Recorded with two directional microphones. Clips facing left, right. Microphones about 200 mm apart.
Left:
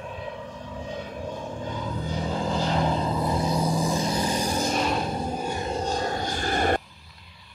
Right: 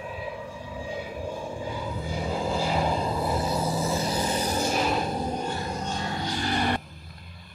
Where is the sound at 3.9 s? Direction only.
5° right (ahead or behind).